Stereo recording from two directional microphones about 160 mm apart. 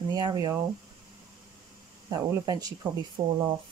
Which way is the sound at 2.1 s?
25° right (ahead or behind).